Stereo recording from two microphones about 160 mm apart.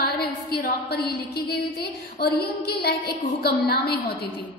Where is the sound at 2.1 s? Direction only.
75° left (ahead or behind).